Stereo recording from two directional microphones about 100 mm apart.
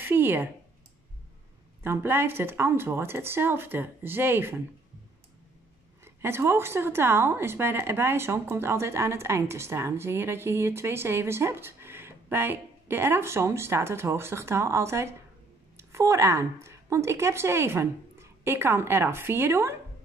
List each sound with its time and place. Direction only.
0.0 s a sound: 20° right (ahead or behind)
1.8 s a woman's voice: 25° right (ahead or behind)
6.0 s a woman's voice: 25° right (ahead or behind)